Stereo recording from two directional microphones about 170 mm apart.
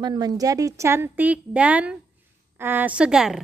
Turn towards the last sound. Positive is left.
turn(degrees=-5)  # may be behind; listen again after turning